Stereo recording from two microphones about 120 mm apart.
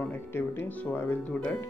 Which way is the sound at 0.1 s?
20° left (ahead or behind).